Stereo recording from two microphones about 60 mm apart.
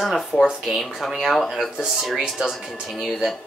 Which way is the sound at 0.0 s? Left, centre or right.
Centre.